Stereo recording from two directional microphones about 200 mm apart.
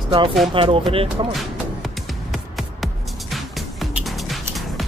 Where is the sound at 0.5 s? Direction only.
25° right (ahead or behind).